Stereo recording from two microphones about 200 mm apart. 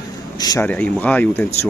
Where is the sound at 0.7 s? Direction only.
5° left (ahead or behind).